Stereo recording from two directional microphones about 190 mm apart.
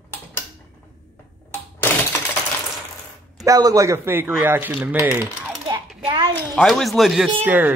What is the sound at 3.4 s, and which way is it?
Speech, 20° right (ahead or behind).